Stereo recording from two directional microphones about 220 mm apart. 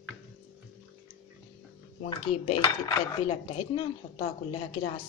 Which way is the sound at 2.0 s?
25° left (ahead or behind).